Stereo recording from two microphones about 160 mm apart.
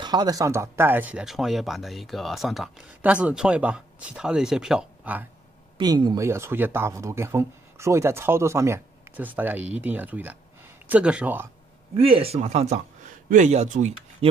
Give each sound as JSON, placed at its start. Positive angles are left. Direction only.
{"t": 0.0, "sound": "speech", "side_deg": -25}
{"t": 5.8, "sound": "speech", "side_deg": -25}
{"t": 12.0, "sound": "speech", "side_deg": -35}